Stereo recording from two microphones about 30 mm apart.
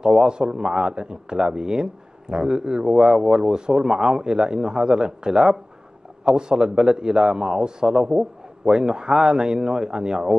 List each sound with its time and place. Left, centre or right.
0.2 s a man's voice: right